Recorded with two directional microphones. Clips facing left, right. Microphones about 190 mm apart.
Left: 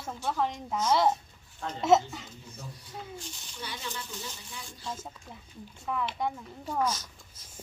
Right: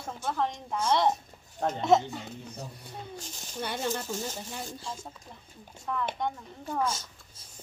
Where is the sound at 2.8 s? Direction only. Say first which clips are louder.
Even; 45° right (ahead or behind).